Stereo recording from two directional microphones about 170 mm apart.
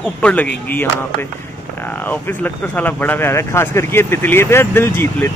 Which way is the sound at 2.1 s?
10° left (ahead or behind).